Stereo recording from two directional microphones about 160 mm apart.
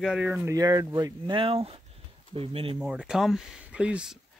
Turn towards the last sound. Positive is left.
turn(degrees=-5)  # may be behind; listen again after turning